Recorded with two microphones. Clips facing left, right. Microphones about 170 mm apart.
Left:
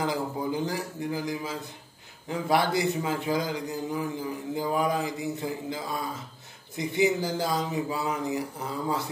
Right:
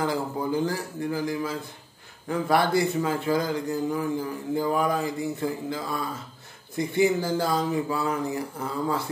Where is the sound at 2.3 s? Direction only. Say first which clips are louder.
Right 2 dB; 20° left (ahead or behind).